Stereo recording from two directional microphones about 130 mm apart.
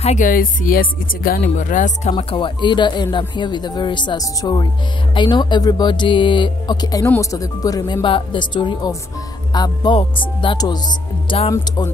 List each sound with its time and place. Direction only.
0.0 s speech: 70° left (ahead or behind)
2.1 s speech: 40° left (ahead or behind)
11.5 s music: 30° left (ahead or behind)